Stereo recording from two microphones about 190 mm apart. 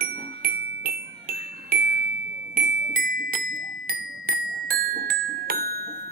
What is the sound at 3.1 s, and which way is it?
Music, 45° right (ahead or behind).